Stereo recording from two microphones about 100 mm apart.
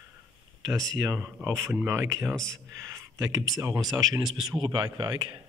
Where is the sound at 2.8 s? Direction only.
30° right (ahead or behind).